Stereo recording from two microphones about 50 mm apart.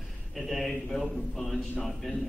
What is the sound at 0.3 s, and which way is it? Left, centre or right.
A man's voice, centre.